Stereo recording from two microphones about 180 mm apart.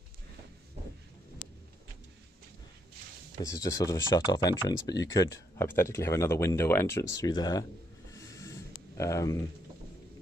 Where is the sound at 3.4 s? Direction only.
20° left (ahead or behind).